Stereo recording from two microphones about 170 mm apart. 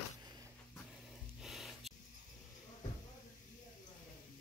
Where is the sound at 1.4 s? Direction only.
Centre (ahead or behind).